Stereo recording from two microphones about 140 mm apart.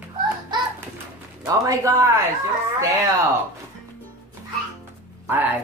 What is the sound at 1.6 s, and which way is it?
Speech, 25° right (ahead or behind).